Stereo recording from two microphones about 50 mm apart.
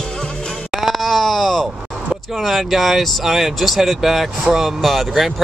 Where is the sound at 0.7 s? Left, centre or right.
Centre.